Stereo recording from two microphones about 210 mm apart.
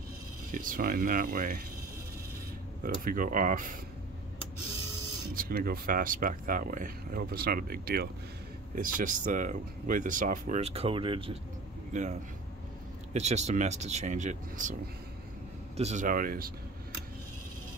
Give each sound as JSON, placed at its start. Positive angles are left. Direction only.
{"t": 0.5, "sound": "speech", "side_deg": -40}
{"t": 2.8, "sound": "speech", "side_deg": -40}
{"t": 5.3, "sound": "speech", "side_deg": -45}